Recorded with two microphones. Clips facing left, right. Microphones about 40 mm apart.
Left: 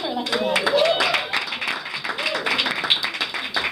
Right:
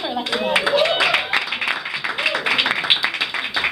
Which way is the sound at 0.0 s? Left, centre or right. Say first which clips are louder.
Right 1 dB; right.